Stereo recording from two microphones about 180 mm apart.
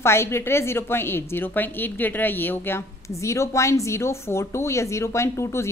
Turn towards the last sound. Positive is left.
turn(degrees=15)  # may be behind; listen again after turning